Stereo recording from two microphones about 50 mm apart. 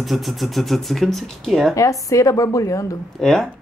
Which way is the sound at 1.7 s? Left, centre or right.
Left.